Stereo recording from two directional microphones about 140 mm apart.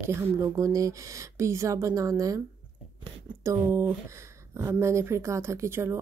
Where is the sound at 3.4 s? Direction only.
20° right (ahead or behind).